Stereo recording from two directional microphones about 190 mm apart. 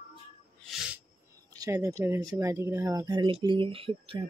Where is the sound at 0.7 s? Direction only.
Centre (ahead or behind).